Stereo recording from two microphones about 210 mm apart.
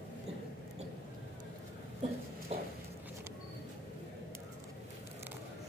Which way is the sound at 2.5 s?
30° right (ahead or behind).